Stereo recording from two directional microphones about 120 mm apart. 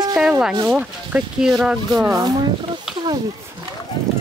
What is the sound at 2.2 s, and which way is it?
Speech, 35° right (ahead or behind).